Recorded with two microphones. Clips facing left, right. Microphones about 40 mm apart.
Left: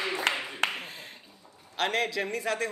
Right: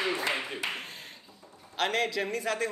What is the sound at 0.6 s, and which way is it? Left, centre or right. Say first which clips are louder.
Clapping: left 9 dB; left.